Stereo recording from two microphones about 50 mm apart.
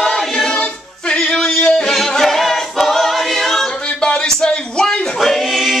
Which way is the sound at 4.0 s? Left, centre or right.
Centre.